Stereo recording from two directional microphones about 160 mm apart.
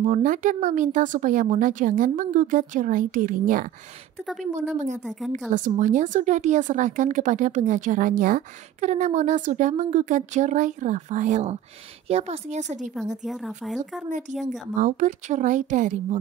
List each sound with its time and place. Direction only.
0.0 s a woman's voice: 55° right (ahead or behind)
4.7 s a woman's voice: 50° right (ahead or behind)
13.2 s speech: 5° right (ahead or behind)
14.8 s a woman's voice: 50° right (ahead or behind)